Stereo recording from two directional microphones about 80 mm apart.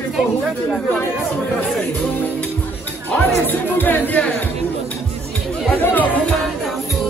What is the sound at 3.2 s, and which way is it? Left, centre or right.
Speech, left.